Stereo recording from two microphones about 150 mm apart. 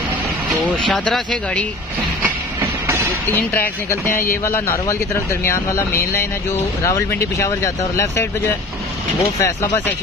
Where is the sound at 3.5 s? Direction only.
15° left (ahead or behind).